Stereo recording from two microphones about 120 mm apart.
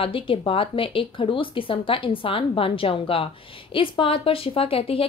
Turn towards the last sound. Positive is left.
turn(degrees=50)  # may be behind; listen again after turning